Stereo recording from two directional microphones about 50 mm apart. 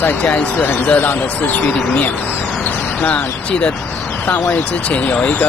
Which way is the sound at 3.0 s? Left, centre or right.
Left.